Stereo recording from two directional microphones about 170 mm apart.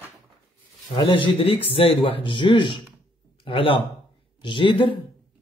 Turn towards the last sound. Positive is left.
turn(degrees=30)  # may be behind; listen again after turning